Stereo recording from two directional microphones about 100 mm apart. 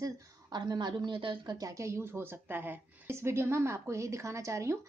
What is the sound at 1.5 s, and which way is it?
Speech, 35° right (ahead or behind).